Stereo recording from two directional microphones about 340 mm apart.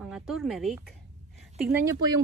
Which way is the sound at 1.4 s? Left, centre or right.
Centre.